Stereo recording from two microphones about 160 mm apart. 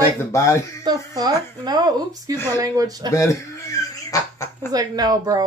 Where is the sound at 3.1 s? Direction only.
20° left (ahead or behind).